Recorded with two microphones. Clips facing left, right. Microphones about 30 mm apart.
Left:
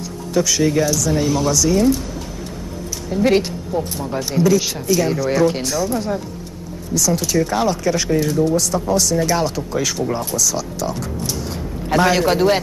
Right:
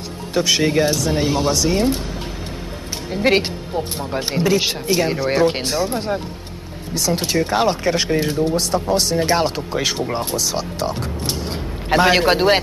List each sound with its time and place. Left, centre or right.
0.3 s speech: right
3.1 s speech: right